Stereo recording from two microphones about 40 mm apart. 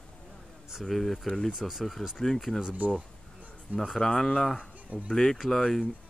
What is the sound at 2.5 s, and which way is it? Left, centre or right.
Speech, left.